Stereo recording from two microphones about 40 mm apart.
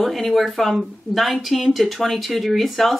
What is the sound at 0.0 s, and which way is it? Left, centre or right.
Speech, centre.